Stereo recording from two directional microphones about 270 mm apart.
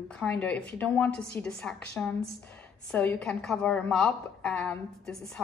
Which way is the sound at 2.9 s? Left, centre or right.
Centre.